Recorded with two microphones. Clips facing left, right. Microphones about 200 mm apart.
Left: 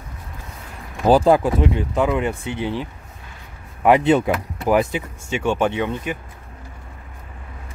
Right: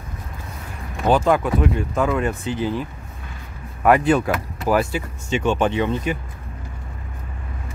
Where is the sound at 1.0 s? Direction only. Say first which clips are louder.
Left 3 dB; 35° left (ahead or behind); by 2.3 s 15° left (ahead or behind).